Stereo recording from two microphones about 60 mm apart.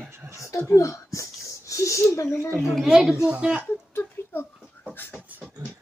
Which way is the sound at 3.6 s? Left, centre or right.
Left.